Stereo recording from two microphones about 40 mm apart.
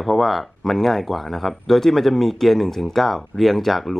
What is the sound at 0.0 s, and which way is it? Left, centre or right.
Speech, centre.